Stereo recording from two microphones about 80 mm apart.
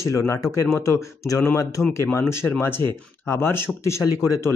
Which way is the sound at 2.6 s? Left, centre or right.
Left.